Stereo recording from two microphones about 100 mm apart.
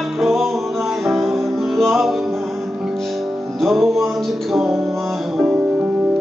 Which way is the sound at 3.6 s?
Centre (ahead or behind).